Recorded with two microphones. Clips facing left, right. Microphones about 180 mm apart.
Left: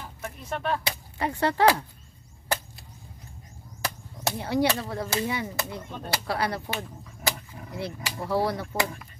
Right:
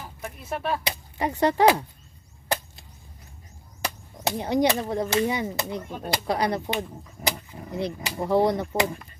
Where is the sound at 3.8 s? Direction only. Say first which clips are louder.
Right 2 dB; 15° right (ahead or behind).